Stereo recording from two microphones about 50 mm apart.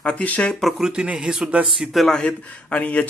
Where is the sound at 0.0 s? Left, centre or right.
Left.